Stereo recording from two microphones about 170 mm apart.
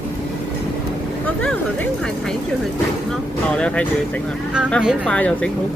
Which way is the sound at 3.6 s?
5° left (ahead or behind).